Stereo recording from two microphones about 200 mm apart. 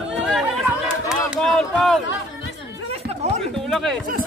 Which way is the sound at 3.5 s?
Centre (ahead or behind).